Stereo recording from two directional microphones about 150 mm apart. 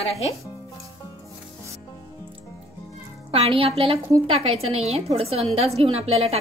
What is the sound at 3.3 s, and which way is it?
A woman's voice, 40° right (ahead or behind).